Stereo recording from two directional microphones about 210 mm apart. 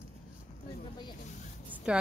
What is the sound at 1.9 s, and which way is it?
Speech, 5° right (ahead or behind).